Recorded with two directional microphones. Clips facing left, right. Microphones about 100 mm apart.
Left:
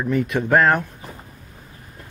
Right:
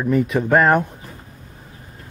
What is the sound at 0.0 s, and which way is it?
Speech, 5° right (ahead or behind).